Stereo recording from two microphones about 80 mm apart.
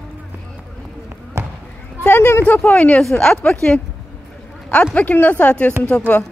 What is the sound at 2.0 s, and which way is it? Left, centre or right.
Speech, left.